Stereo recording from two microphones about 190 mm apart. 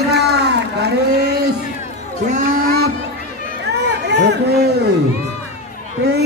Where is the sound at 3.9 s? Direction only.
60° right (ahead or behind).